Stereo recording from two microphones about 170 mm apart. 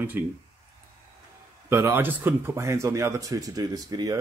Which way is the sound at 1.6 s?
15° right (ahead or behind).